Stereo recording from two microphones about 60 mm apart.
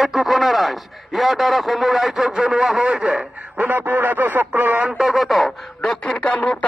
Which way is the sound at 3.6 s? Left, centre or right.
Right.